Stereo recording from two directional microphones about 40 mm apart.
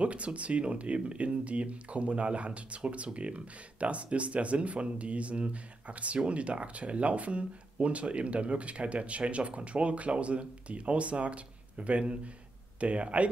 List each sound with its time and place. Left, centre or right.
0.0 s speech: right